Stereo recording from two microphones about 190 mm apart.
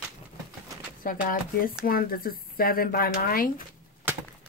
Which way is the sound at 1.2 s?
45° left (ahead or behind).